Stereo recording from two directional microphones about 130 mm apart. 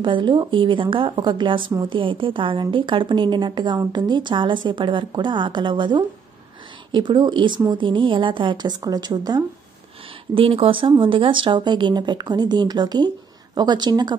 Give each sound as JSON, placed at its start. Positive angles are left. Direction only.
{"t": 0.0, "sound": "a woman's voice", "side_deg": -40}
{"t": 10.3, "sound": "a woman's voice", "side_deg": -45}